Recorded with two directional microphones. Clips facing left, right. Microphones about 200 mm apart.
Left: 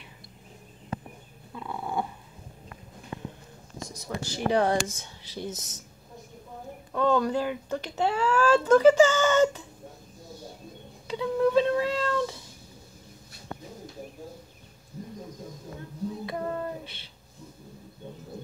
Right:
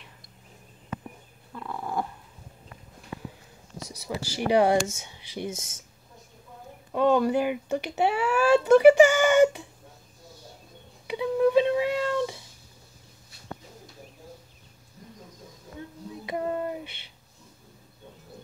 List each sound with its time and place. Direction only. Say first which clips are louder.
1.5 s dog: even; 5° left (ahead or behind)
4.1 s speech: right 2 dB; 10° right (ahead or behind)
6.9 s speech: right 3 dB; 15° right (ahead or behind)
11.1 s cat: right 2 dB; 15° right (ahead or behind)
16.3 s child singing: right 6 dB; 15° right (ahead or behind)